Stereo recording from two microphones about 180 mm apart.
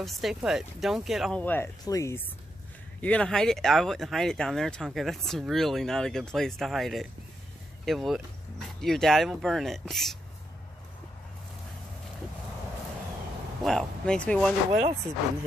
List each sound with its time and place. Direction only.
0.0 s speech: centre (ahead or behind)
1.4 s speech: 10° left (ahead or behind)
13.7 s speech: 5° left (ahead or behind)
14.7 s speech: 35° right (ahead or behind)